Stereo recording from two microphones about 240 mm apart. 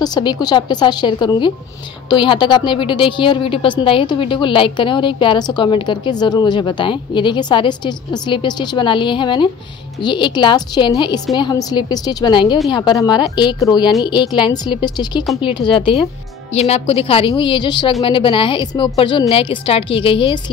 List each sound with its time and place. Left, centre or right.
0.0 s a woman's voice: centre